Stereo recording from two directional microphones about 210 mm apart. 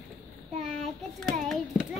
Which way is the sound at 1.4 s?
Centre (ahead or behind).